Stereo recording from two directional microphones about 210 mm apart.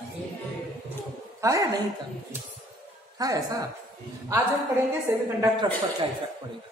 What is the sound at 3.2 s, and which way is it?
Speech, 15° right (ahead or behind).